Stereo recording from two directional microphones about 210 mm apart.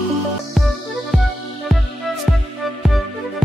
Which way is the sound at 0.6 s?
Centre (ahead or behind).